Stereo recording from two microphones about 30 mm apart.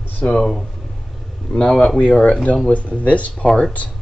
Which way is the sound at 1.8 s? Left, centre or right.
Left.